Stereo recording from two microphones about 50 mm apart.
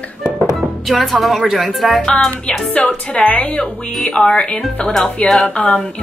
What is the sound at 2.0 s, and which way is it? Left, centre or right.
A woman's voice, centre.